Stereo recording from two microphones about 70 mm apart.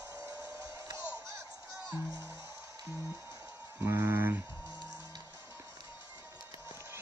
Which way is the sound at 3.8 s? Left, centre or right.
Right.